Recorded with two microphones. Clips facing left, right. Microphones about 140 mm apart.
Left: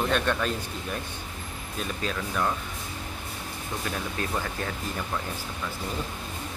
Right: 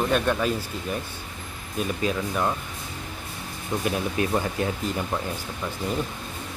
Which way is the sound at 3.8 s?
15° right (ahead or behind).